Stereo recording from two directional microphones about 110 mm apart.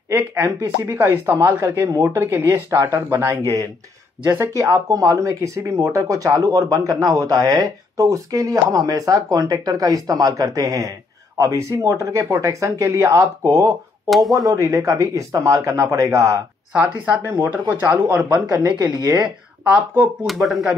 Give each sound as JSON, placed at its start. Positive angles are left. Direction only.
{"t": 0.1, "sound": "speech", "side_deg": -25}
{"t": 16.7, "sound": "speech", "side_deg": -10}
{"t": 18.3, "sound": "speech", "side_deg": -35}
{"t": 19.7, "sound": "speech", "side_deg": -15}
{"t": 20.2, "sound": "speech", "side_deg": 0}